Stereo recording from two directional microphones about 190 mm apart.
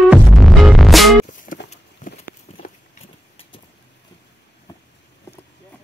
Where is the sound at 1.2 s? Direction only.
40° left (ahead or behind).